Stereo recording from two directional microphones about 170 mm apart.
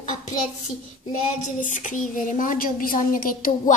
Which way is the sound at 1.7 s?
50° left (ahead or behind).